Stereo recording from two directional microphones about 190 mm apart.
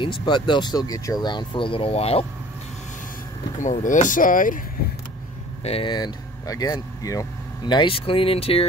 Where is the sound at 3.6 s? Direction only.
40° left (ahead or behind).